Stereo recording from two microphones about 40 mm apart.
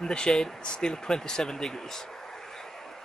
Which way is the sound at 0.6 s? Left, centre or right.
Centre.